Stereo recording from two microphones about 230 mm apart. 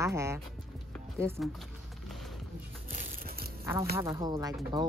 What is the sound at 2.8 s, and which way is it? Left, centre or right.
Crumpling, right.